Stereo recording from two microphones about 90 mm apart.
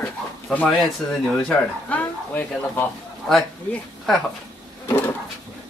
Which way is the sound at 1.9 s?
15° left (ahead or behind).